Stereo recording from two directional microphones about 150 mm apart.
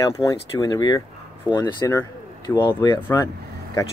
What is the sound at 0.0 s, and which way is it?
Speech, 20° left (ahead or behind).